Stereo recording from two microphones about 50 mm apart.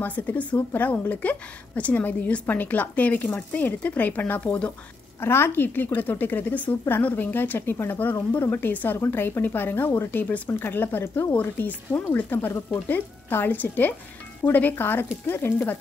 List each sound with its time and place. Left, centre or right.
0.0 s speech: left
5.2 s speech: left
10.5 s speech: left